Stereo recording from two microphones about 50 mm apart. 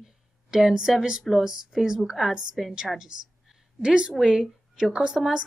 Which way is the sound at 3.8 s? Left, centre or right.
Centre.